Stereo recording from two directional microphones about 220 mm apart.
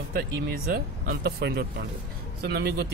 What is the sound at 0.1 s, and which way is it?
Speech, 45° right (ahead or behind).